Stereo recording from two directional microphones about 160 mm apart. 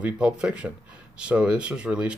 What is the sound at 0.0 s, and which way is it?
Speech, 5° right (ahead or behind).